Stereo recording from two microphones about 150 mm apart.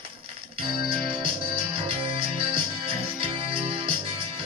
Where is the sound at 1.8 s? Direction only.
35° right (ahead or behind).